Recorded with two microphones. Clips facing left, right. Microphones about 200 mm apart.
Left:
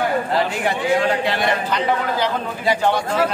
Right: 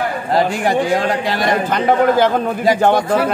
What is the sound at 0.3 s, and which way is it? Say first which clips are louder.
A man's voice: right 5 dB; 40° right (ahead or behind).